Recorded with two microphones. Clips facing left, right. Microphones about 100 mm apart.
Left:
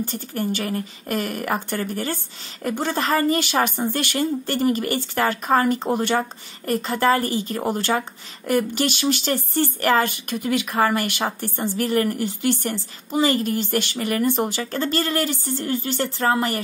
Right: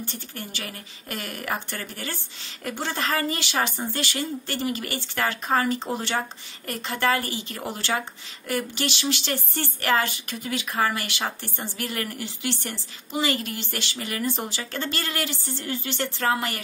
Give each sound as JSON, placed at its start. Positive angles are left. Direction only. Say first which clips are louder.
{"t": 0.0, "sound": "a woman's voice", "louder": "left 10 dB", "side_deg": 40}
{"t": 6.6, "sound": "a woman's voice", "louder": "left 6 dB", "side_deg": 35}
{"t": 14.6, "sound": "speech", "louder": "left 7 dB", "side_deg": 40}